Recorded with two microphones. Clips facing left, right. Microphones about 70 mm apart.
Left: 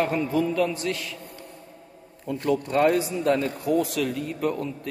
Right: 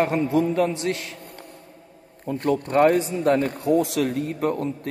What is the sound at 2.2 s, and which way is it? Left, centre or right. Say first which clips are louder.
A man's voice: right 2 dB; right.